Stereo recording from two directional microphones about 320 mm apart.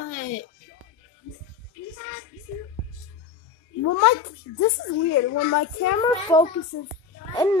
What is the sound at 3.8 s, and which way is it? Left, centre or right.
A woman's voice, left.